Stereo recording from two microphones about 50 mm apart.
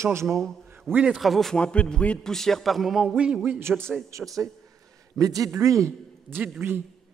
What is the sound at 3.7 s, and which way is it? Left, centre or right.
Speech, centre.